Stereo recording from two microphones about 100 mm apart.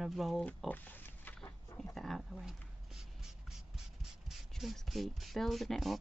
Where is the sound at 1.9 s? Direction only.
Centre (ahead or behind).